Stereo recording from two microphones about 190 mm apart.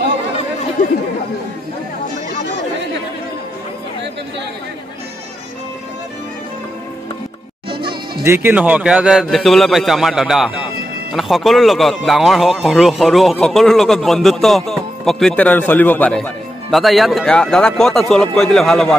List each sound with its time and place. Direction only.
8.2 s speech: 15° right (ahead or behind); by 18.9 s centre (ahead or behind)